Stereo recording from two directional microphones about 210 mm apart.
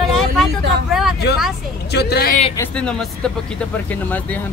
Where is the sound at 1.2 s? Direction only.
50° left (ahead or behind).